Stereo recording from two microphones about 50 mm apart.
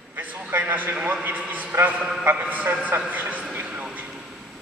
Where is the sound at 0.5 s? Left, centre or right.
Right.